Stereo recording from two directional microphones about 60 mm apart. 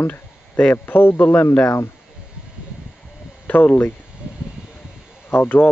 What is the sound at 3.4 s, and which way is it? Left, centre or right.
Speech, left.